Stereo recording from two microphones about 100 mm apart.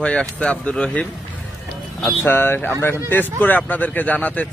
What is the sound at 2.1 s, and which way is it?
Speech, 20° left (ahead or behind).